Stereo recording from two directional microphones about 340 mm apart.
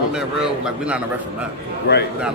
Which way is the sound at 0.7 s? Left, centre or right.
Centre.